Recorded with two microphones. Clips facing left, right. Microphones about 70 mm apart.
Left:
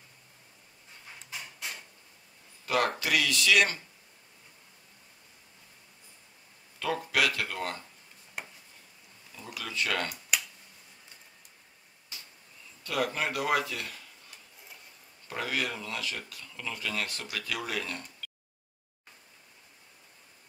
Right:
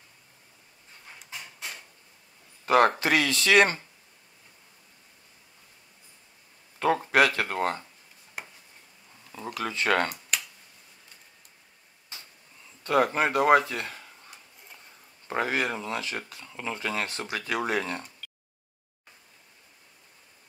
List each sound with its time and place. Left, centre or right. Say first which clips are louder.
2.6 s speech: right 7 dB; right
6.8 s speech: right 7 dB; right
8.4 s a sound: right 1 dB; centre
9.6 s speech: right 6 dB; right
12.8 s speech: right 7 dB; right
15.2 s speech: right 5 dB; right